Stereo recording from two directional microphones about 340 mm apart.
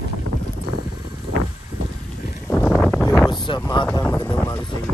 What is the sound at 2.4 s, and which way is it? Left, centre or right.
Wind, centre.